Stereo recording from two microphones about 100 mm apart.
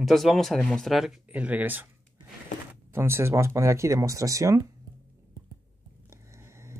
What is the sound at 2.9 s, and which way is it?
Speech, 25° right (ahead or behind).